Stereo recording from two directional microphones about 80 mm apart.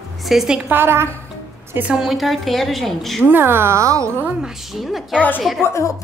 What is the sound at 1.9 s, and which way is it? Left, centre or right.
A woman's voice, centre.